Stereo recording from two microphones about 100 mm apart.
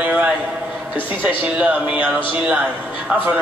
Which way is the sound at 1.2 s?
15° right (ahead or behind).